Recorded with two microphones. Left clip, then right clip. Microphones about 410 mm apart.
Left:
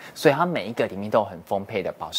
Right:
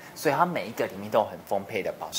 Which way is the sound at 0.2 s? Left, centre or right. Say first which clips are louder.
Left 4 dB; left.